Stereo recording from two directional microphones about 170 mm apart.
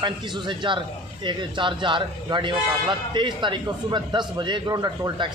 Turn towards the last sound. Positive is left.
turn(degrees=-20)  # may be behind; listen again after turning